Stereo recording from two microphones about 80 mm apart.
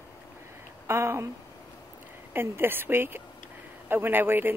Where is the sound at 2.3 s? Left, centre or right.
Right.